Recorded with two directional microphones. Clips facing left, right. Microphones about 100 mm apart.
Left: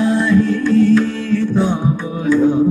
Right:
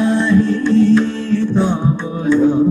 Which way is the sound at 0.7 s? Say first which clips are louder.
Even; 30° right (ahead or behind).